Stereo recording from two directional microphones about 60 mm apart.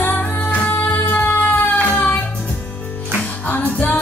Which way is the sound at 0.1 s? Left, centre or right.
Left.